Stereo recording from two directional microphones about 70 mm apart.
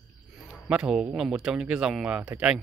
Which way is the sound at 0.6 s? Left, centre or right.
Centre.